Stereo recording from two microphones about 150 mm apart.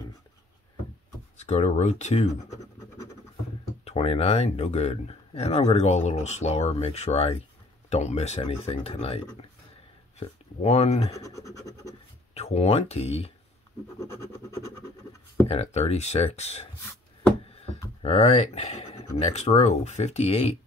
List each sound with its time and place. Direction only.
1.4 s speech: 50° left (ahead or behind)
3.8 s speech: 45° left (ahead or behind)
11.1 s scratch: 20° left (ahead or behind)
12.4 s speech: 45° left (ahead or behind)
13.9 s scratch: 20° left (ahead or behind)
15.4 s speech: 45° left (ahead or behind)
18.0 s speech: 45° left (ahead or behind)